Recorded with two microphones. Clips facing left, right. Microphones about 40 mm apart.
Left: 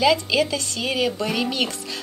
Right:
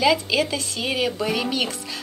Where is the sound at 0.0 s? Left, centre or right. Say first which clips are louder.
Left 1 dB; centre.